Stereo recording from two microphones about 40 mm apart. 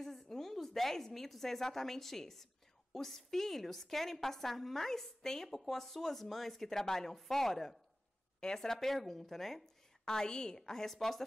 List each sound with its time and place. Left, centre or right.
0.0 s a woman's voice: centre
10.0 s a woman's voice: centre